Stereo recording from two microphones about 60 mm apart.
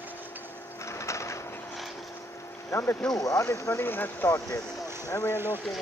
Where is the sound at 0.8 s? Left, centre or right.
Left.